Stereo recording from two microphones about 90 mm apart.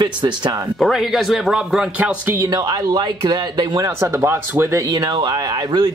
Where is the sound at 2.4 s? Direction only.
45° right (ahead or behind).